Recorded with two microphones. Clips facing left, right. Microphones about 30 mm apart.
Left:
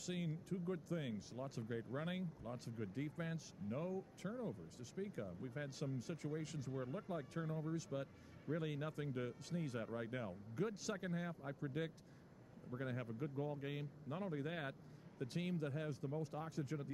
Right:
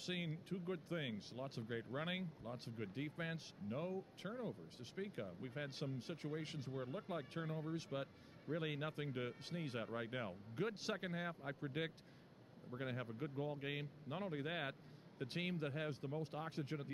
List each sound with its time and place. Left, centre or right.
0.0 s speech: right